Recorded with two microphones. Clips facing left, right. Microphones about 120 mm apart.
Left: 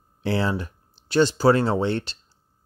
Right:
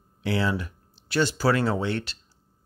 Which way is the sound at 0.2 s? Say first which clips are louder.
Left 2 dB; 30° left (ahead or behind).